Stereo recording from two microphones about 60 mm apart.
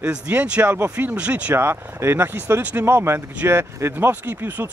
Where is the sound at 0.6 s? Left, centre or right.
Right.